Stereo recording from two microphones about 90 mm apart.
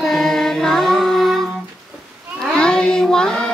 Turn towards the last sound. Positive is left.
turn(degrees=10)  # may be behind; listen again after turning